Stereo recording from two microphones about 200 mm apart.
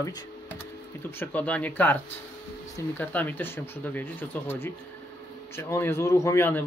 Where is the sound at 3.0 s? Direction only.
10° left (ahead or behind).